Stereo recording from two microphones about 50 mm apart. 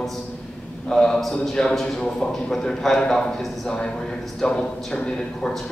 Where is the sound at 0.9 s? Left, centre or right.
Centre.